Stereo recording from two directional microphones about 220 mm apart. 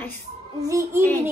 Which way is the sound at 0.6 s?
15° right (ahead or behind).